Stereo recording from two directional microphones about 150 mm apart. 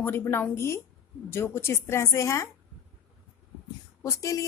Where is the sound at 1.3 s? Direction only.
15° left (ahead or behind).